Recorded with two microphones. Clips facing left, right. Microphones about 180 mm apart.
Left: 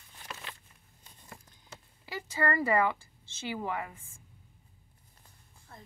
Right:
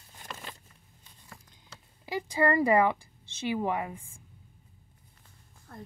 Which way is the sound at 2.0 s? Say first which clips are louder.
Right 5 dB; 15° right (ahead or behind).